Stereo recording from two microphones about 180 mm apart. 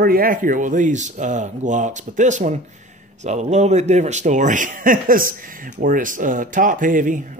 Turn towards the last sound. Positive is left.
turn(degrees=-45)  # may be behind; listen again after turning